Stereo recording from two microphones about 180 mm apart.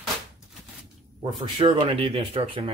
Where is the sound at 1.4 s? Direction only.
30° right (ahead or behind).